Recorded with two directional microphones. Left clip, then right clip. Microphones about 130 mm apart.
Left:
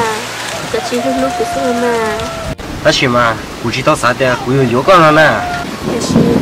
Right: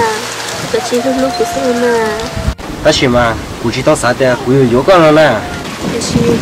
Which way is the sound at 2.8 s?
Centre (ahead or behind).